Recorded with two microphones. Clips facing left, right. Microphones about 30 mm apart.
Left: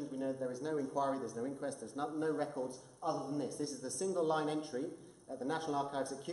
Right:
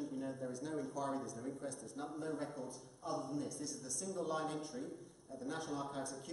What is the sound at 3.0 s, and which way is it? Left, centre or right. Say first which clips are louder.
Speech: left 4 dB; centre.